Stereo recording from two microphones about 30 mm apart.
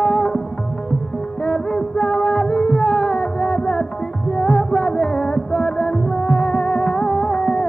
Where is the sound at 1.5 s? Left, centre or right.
Centre.